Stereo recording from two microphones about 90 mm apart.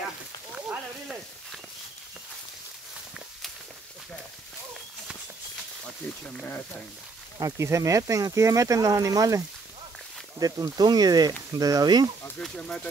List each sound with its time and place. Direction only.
7.3 s speech: 35° right (ahead or behind)
10.4 s speech: 50° right (ahead or behind)
12.4 s speech: 10° left (ahead or behind)